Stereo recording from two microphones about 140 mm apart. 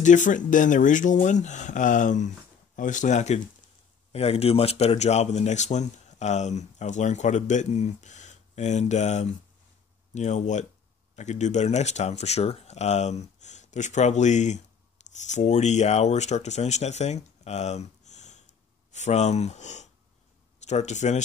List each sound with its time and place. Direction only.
0.0 s speech: 65° left (ahead or behind)
4.1 s speech: 45° left (ahead or behind)